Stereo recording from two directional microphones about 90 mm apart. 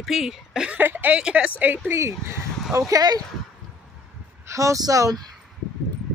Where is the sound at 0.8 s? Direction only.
20° right (ahead or behind).